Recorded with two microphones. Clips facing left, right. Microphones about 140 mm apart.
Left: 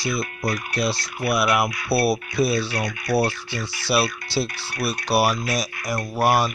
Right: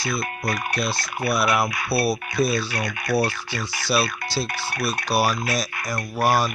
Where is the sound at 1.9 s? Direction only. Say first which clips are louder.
Left 3 dB; 65° left (ahead or behind).